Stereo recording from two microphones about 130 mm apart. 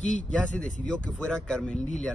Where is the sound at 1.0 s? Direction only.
10° left (ahead or behind).